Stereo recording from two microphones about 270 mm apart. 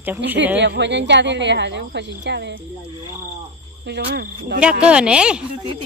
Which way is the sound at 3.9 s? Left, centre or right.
Right.